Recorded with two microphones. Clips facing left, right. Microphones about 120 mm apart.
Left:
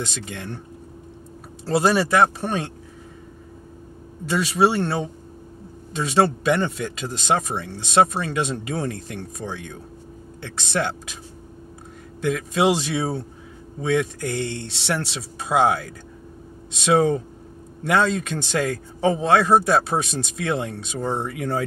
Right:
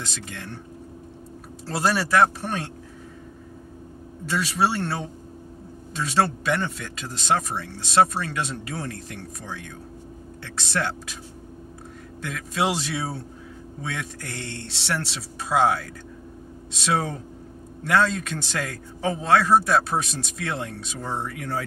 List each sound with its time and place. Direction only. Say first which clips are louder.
0.0 s speech: left 5 dB; 20° left (ahead or behind)
1.7 s speech: left 4 dB; 20° left (ahead or behind)
4.3 s speech: left 4 dB; 20° left (ahead or behind)
12.2 s speech: left 6 dB; 20° left (ahead or behind)
14.5 s speech: left 3 dB; 15° left (ahead or behind)